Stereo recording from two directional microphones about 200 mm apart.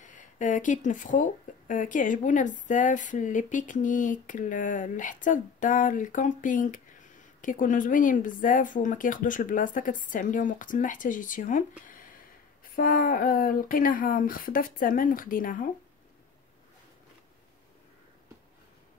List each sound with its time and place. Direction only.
0.0 s speech: 40° left (ahead or behind)
12.7 s speech: 45° left (ahead or behind)